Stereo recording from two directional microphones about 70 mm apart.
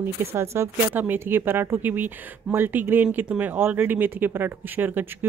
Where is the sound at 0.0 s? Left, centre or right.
Right.